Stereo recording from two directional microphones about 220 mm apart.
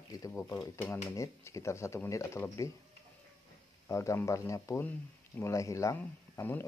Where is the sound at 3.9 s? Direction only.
15° left (ahead or behind).